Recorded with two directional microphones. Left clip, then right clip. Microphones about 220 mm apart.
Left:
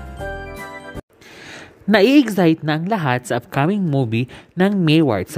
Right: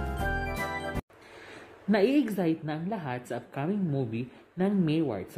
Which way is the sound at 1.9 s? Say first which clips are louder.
Left 12 dB; 40° left (ahead or behind).